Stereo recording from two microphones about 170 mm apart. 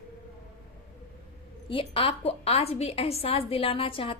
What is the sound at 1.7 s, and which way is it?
A woman's voice, 30° left (ahead or behind).